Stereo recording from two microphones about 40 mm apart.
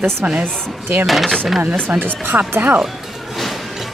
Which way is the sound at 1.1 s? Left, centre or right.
Centre.